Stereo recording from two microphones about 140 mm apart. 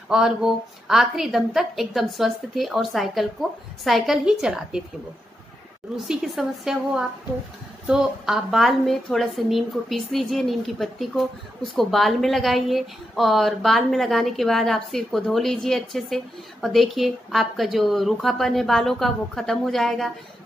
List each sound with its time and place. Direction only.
0.1 s a woman's voice: 5° right (ahead or behind)
6.0 s a woman's voice: centre (ahead or behind)